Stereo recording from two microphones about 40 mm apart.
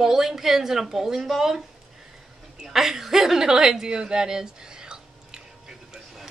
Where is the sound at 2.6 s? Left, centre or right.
Centre.